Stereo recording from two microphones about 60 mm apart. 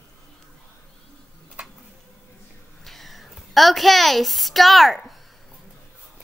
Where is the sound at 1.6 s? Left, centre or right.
Right.